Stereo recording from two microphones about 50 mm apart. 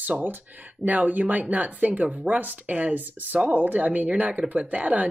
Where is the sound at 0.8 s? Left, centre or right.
Right.